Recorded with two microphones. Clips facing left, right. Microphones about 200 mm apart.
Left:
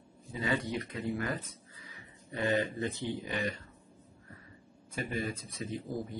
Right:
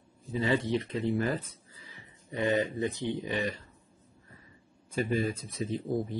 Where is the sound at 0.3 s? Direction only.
25° right (ahead or behind).